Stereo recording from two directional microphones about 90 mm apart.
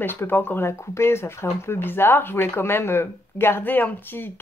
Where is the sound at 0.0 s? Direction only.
25° left (ahead or behind).